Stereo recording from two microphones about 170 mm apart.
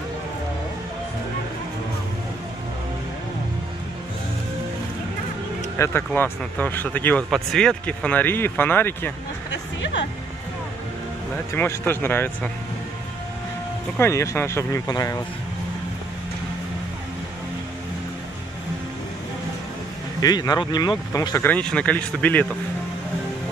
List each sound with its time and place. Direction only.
5.8 s speech: 15° left (ahead or behind)
11.5 s speech: 10° left (ahead or behind)
13.9 s speech: 15° left (ahead or behind)
20.2 s speech: 20° left (ahead or behind)
21.5 s speech: 5° left (ahead or behind)